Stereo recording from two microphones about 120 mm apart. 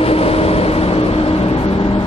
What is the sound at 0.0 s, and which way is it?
Vehicle, 55° left (ahead or behind).